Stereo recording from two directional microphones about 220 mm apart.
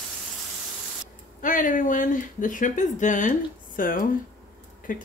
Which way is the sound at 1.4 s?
35° left (ahead or behind).